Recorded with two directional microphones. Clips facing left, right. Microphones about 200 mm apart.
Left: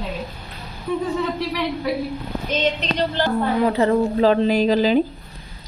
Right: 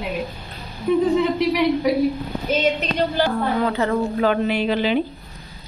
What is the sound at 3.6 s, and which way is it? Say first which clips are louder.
A woman's voice: left 3 dB; 30° left (ahead or behind).